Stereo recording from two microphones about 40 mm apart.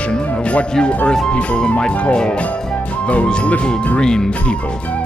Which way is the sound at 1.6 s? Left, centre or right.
Left.